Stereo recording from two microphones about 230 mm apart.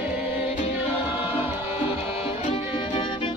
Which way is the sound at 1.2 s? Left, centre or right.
Left.